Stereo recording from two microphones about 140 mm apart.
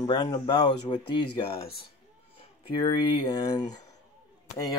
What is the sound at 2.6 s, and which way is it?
Speech, 30° left (ahead or behind).